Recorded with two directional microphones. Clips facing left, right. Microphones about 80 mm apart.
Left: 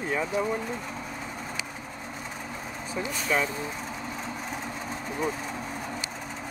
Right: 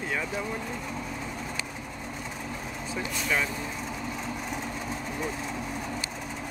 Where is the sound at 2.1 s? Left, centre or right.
Centre.